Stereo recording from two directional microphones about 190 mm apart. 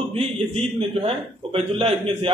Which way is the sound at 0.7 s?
30° right (ahead or behind).